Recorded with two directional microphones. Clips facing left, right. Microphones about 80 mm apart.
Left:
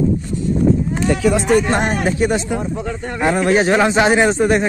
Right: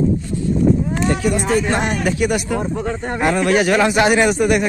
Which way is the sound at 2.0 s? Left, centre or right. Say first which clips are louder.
Left 1 dB; left.